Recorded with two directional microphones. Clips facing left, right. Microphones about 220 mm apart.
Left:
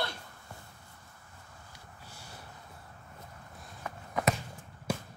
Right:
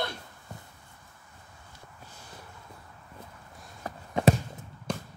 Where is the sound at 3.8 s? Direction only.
30° right (ahead or behind).